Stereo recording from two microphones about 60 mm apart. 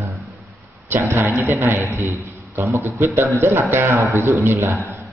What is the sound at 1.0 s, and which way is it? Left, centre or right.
A man's voice, right.